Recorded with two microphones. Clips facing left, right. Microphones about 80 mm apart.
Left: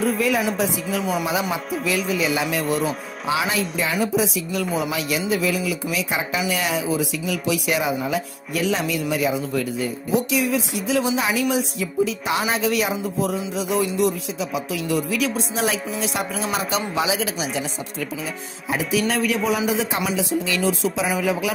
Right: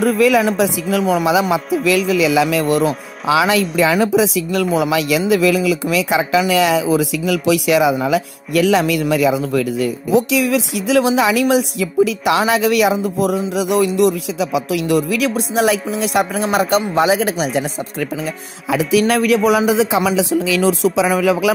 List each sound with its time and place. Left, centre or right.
0.0 s speech: right
16.0 s music: right
16.4 s speech: right
18.7 s speech: right
20.0 s speech: right